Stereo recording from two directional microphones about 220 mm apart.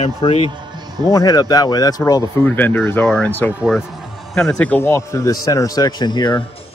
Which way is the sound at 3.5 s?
5° right (ahead or behind).